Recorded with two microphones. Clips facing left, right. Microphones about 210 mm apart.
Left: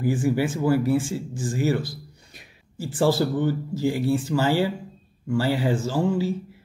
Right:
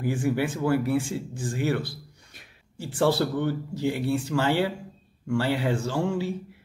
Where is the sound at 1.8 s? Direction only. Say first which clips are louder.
Left 1 dB; 60° right (ahead or behind).